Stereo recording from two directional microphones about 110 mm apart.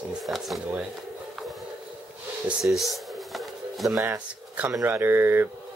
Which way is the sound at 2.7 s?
Centre (ahead or behind).